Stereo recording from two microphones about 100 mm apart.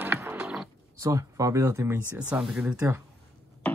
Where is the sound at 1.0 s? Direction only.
35° right (ahead or behind).